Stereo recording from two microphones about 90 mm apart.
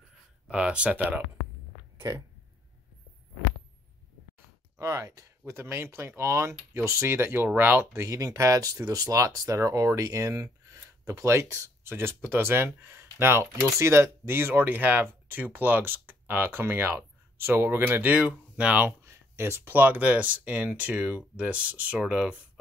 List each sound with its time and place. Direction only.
0.5 s speech: 10° right (ahead or behind)
4.7 s speech: 35° right (ahead or behind); by 18.9 s 15° right (ahead or behind)
19.0 s speech: 30° right (ahead or behind); by 22.4 s 10° right (ahead or behind)